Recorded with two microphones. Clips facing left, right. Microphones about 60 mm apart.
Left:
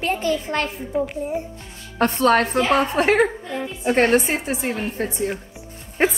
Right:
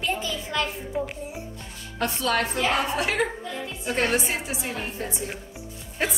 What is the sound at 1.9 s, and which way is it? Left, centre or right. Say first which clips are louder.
A woman's voice: left 8 dB; left.